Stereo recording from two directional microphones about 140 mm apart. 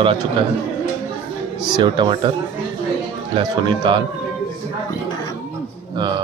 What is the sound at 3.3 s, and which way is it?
Speech, 35° right (ahead or behind).